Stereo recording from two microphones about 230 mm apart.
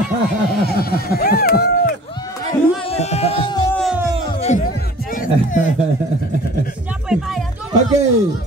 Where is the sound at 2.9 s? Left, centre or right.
Left.